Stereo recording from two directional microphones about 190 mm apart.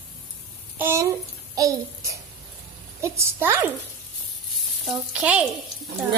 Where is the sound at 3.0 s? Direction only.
15° right (ahead or behind).